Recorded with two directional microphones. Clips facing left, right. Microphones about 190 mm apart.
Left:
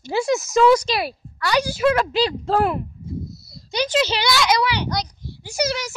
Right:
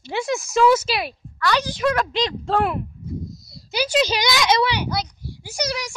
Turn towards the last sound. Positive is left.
turn(degrees=5)  # may be behind; listen again after turning